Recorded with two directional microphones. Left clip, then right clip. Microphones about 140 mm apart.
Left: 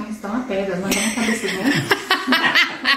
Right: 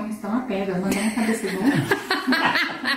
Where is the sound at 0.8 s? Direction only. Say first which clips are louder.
Left 4 dB; 5° right (ahead or behind).